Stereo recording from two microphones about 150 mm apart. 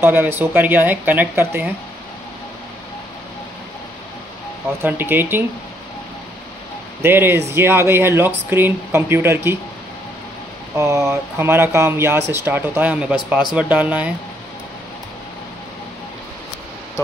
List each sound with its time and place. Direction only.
0.0 s speech: 15° right (ahead or behind)
4.8 s speech: 15° right (ahead or behind)
7.0 s speech: 15° right (ahead or behind)
10.8 s speech: 20° right (ahead or behind)